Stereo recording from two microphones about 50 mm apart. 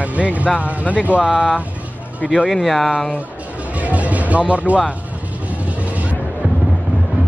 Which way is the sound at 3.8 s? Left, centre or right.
Right.